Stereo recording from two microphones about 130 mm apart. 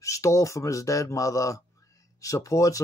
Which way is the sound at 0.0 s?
25° left (ahead or behind).